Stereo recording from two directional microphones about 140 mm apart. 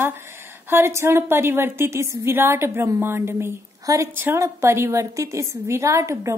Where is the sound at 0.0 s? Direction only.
15° right (ahead or behind).